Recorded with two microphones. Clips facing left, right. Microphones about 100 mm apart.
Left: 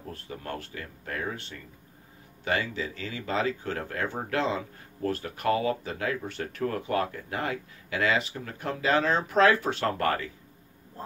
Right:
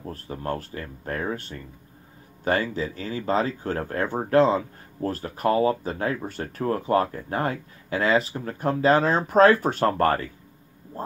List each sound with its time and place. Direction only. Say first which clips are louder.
0.0 s speech: right 6 dB; 40° right (ahead or behind)